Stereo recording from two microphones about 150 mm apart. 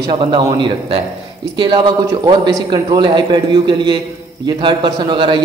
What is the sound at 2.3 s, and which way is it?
A man's voice, 30° right (ahead or behind).